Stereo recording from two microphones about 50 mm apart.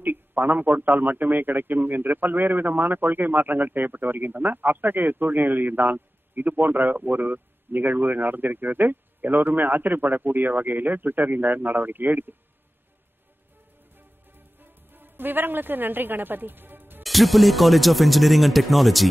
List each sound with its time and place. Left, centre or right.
0.0 s a man's voice: right
13.9 s music: right
17.0 s speech: centre